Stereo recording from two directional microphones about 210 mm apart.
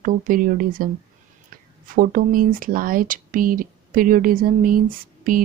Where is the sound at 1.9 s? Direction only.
40° right (ahead or behind).